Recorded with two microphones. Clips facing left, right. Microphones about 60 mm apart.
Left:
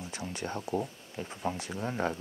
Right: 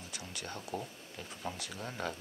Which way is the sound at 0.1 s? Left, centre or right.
Left.